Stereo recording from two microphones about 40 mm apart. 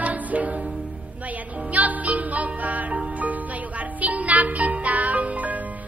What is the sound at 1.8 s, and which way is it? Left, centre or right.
Music, right.